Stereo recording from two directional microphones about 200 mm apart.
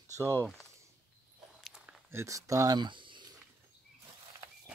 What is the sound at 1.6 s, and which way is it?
Walk, centre (ahead or behind).